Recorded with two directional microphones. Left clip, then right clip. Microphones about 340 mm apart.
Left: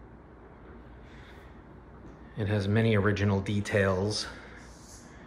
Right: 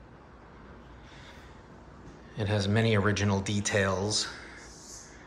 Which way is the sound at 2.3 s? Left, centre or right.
Centre.